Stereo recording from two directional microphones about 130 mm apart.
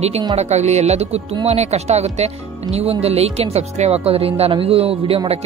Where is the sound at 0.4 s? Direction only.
60° right (ahead or behind).